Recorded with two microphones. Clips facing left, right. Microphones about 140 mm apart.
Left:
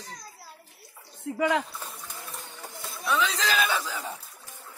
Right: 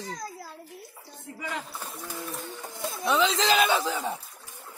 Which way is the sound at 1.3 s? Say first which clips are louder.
Left 11 dB; 80° left.